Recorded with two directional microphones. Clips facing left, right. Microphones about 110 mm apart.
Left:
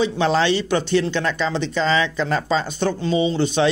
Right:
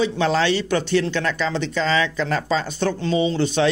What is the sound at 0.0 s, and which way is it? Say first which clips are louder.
Speech: left 1 dB; 25° left (ahead or behind).